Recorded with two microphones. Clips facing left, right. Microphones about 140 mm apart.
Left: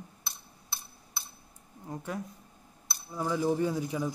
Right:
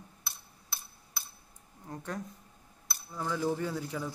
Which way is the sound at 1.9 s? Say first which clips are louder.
Left 2 dB; 10° left (ahead or behind).